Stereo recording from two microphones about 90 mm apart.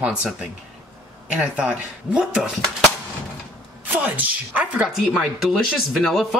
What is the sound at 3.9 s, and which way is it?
A woman's voice, 20° right (ahead or behind).